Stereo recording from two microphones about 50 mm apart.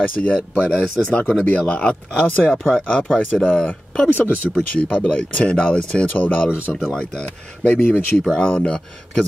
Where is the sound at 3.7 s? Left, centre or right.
Left.